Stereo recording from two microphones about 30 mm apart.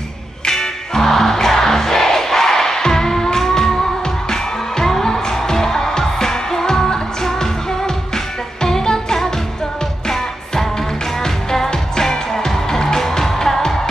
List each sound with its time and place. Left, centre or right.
0.5 s music: centre
11.2 s music: centre